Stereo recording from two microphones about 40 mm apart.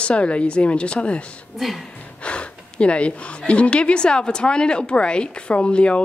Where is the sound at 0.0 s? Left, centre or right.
Left.